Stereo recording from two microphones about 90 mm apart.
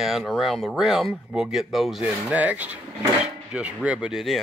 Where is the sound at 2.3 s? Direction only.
15° right (ahead or behind).